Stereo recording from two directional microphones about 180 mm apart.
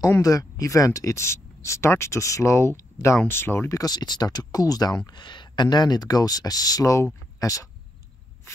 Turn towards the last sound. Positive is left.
turn(degrees=20)  # may be behind; listen again after turning